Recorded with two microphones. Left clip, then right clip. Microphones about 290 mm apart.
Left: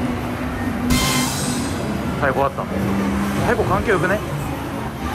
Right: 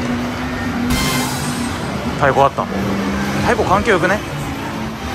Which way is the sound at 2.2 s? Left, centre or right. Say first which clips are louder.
Right 5 dB; centre.